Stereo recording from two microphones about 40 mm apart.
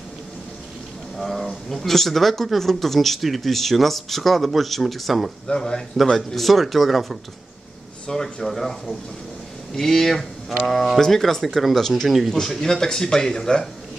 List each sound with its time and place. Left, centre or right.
1.1 s speech: centre
5.5 s a man's voice: centre
6.1 s speech: centre
8.1 s a man's voice: centre
8.5 s a man's voice: centre
10.7 s speech: centre
11.0 s a man's voice: centre
12.4 s a man's voice: centre